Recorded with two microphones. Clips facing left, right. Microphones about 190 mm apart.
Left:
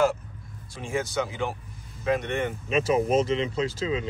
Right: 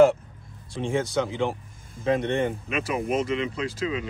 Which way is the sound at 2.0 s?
25° right (ahead or behind).